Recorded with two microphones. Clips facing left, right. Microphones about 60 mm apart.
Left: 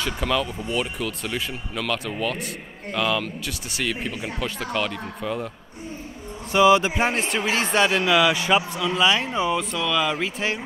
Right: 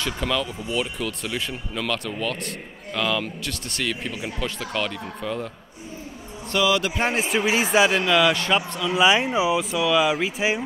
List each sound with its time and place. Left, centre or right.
0.0 s speech: centre
6.6 s speech: left
7.0 s speech: centre
8.0 s speech: centre
8.9 s speech: centre